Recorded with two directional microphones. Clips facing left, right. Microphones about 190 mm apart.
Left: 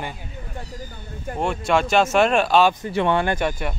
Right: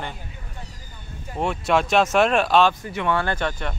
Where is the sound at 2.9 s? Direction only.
30° left (ahead or behind).